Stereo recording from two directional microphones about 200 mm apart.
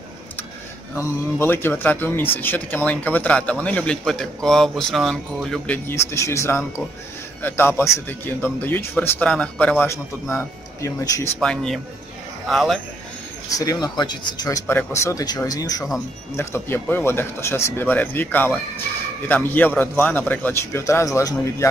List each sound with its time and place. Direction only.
0.9 s speech: 10° left (ahead or behind)
11.3 s speech: 5° left (ahead or behind)
13.6 s speech: 20° left (ahead or behind)